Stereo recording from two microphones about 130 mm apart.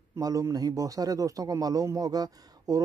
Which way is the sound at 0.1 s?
25° right (ahead or behind).